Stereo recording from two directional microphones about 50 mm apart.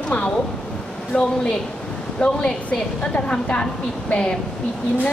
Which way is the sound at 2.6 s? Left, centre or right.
Left.